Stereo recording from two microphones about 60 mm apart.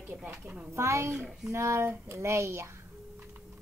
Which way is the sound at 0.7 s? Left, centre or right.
Right.